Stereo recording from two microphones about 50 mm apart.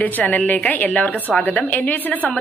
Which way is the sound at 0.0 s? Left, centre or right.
Left.